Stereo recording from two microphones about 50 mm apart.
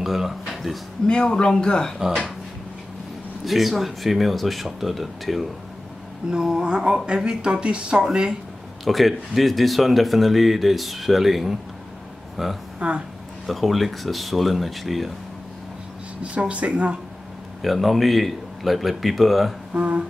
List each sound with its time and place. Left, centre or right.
0.0 s speech: centre
0.5 s a sound: centre
1.0 s speech: centre
3.4 s speech: centre
6.3 s speech: centre
8.8 s speech: centre
12.7 s speech: right
13.5 s speech: centre
16.2 s speech: right
17.6 s speech: centre
19.7 s speech: right